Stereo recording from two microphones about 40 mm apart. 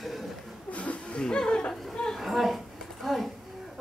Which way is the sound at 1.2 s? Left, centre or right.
Centre.